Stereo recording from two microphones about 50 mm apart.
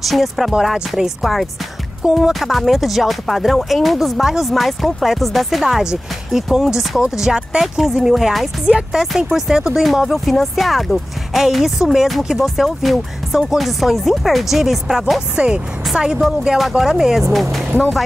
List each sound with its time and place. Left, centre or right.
0.0 s speech: centre
8.6 s speech: centre
15.3 s speech: right; by 17.6 s centre